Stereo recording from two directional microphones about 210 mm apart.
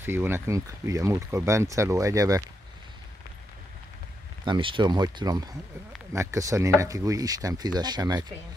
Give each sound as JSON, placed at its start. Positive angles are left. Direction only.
{"t": 0.0, "sound": "speech", "side_deg": -10}
{"t": 4.5, "sound": "speech", "side_deg": -25}